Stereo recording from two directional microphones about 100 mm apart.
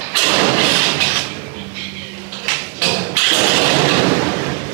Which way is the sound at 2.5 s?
20° right (ahead or behind).